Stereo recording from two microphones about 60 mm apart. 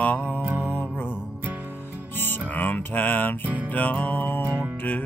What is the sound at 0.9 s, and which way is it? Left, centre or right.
Music, left.